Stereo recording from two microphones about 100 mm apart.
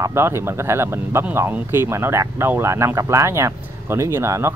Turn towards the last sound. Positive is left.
turn(degrees=-30)  # may be behind; listen again after turning